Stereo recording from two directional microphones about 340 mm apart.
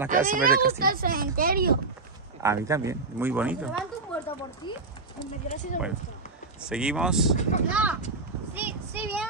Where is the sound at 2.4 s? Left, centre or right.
Centre.